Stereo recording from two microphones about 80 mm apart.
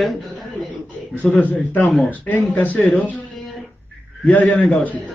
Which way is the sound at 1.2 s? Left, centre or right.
Centre.